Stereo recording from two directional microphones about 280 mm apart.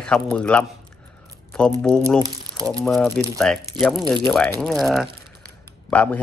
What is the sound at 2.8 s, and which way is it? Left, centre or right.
Speech, centre.